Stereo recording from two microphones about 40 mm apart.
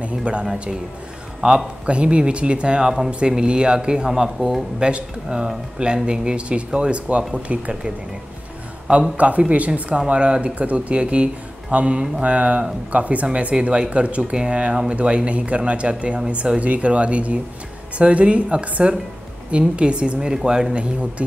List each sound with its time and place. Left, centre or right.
0.0 s a sound: right
1.4 s speech: right
4.1 s speech: centre
4.7 s speech: right
9.1 s speech: right
14.3 s speech: right